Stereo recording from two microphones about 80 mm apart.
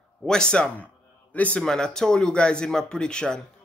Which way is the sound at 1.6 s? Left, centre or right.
Centre.